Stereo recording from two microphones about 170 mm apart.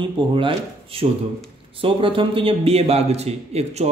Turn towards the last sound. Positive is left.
turn(degrees=-40)  # may be behind; listen again after turning